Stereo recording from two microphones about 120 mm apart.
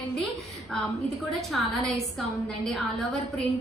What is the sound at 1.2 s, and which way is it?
A woman's voice, centre (ahead or behind).